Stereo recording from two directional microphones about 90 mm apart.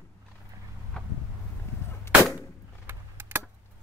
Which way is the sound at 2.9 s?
25° right (ahead or behind).